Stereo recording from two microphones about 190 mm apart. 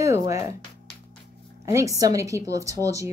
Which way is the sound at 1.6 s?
15° right (ahead or behind).